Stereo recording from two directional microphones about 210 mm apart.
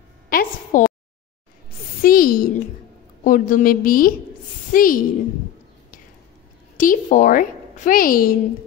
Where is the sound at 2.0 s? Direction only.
40° left (ahead or behind).